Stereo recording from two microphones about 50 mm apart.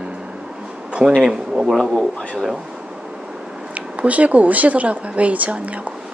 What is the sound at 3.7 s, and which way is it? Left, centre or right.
Speech, right.